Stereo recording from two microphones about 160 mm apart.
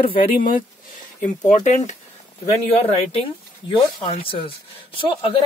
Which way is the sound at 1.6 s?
45° left (ahead or behind).